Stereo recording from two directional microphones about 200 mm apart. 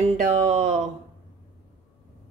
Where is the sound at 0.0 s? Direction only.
35° right (ahead or behind).